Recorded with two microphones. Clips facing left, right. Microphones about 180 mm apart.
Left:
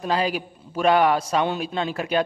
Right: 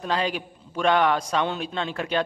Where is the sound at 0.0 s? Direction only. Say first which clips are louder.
Left 3 dB; 5° left (ahead or behind).